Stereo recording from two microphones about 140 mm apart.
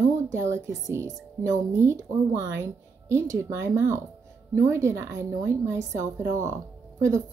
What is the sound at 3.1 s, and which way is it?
Speech, 20° right (ahead or behind).